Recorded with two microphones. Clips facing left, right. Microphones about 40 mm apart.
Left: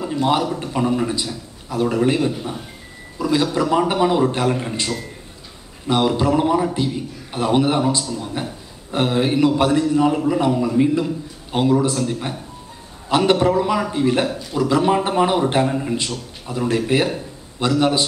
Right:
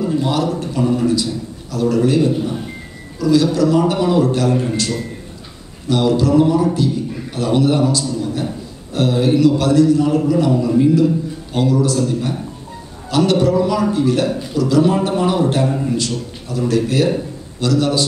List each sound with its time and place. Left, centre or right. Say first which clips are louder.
0.2 s a man's voice: even; centre